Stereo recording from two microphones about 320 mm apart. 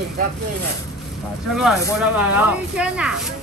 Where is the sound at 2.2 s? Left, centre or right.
Centre.